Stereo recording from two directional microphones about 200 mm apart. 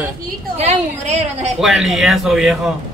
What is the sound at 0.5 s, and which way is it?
A woman's voice, 35° right (ahead or behind).